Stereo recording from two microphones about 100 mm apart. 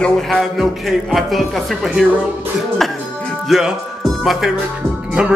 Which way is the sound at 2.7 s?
5° left (ahead or behind).